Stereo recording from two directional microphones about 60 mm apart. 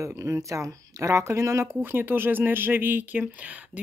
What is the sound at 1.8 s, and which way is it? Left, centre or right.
Speech, right.